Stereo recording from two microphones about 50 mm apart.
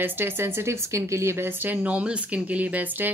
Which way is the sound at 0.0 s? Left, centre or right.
Right.